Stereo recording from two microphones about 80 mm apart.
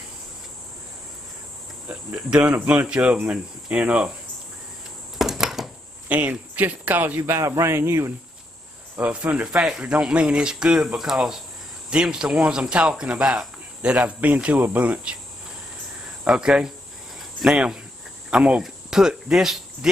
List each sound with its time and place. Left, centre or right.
2.9 s speech: centre
5.2 s a sound: centre
6.0 s speech: centre
7.2 s speech: right
8.9 s speech: centre
16.3 s speech: centre